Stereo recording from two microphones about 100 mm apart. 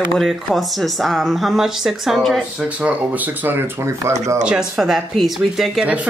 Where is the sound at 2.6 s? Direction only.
15° right (ahead or behind); by 4.2 s 30° right (ahead or behind).